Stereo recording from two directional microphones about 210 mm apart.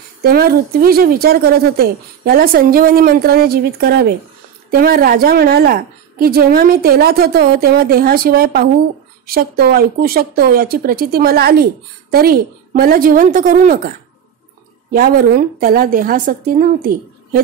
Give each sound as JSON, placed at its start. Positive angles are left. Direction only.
{"t": 0.2, "sound": "a woman's voice", "side_deg": -45}